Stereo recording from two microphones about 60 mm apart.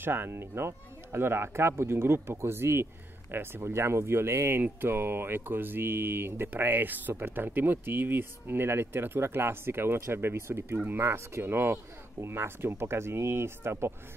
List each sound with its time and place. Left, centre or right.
0.0 s speech: right